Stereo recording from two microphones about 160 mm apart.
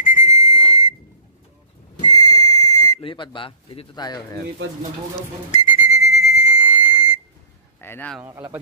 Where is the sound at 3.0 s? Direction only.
30° left (ahead or behind).